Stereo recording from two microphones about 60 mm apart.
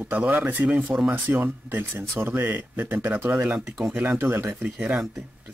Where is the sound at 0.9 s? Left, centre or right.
Right.